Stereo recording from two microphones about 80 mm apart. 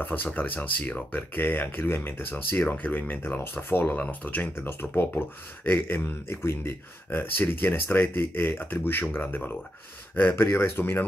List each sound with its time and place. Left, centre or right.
0.0 s speech: left